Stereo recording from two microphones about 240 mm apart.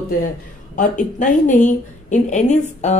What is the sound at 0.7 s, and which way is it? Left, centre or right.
A woman's voice, left.